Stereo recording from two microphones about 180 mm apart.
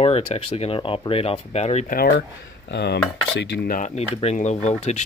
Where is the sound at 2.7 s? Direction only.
70° left (ahead or behind).